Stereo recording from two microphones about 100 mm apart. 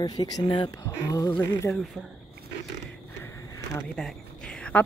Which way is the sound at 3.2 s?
30° left (ahead or behind).